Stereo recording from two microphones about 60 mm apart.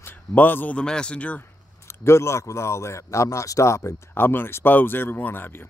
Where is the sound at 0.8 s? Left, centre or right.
Centre.